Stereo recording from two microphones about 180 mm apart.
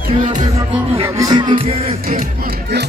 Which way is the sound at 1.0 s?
20° right (ahead or behind).